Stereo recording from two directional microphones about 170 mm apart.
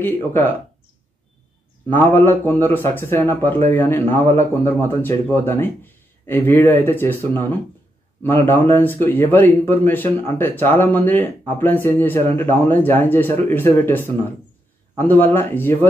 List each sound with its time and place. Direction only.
0.0 s a man's voice: 10° left (ahead or behind)
1.9 s a man's voice: 10° left (ahead or behind)